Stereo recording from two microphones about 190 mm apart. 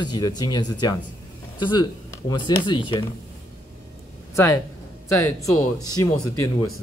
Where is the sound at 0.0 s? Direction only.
20° left (ahead or behind).